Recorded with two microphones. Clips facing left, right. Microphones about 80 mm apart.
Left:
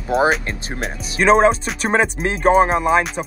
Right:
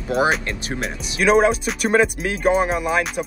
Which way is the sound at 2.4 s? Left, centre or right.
Left.